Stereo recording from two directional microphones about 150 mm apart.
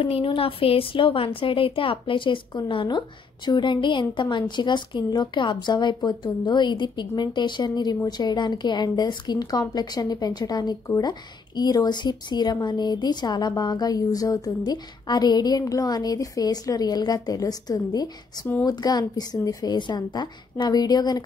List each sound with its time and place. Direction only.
0.0 s a woman's voice: 35° left (ahead or behind)